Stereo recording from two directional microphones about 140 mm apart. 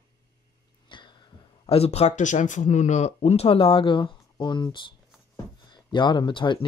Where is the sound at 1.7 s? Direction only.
45° left (ahead or behind).